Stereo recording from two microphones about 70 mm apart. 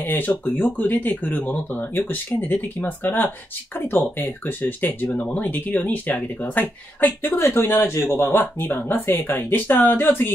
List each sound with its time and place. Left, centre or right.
0.0 s speech: left